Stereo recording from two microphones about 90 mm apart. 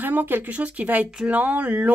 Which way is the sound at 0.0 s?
20° right (ahead or behind).